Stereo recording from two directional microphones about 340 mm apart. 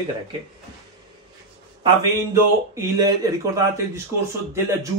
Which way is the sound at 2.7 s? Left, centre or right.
Centre.